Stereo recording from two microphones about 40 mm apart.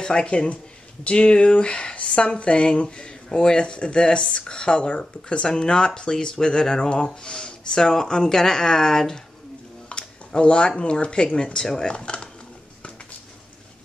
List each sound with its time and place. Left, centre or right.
0.0 s speech: left
9.8 s a sound: left
10.8 s speech: left